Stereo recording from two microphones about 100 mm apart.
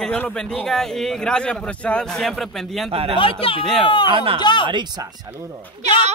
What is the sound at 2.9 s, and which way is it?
Speech, 75° right (ahead or behind).